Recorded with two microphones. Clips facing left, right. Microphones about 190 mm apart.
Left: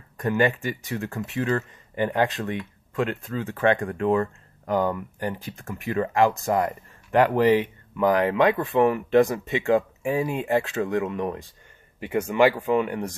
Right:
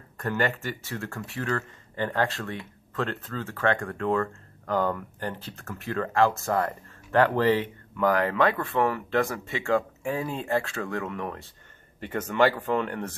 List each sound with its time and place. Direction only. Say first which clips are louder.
0.2 s speech: left 5 dB; 15° left (ahead or behind)